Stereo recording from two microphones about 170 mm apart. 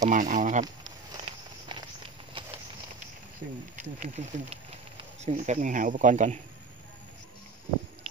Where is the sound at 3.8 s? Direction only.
45° right (ahead or behind).